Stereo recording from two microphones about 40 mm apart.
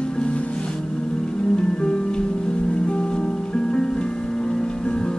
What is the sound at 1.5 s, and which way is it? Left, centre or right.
Music, left.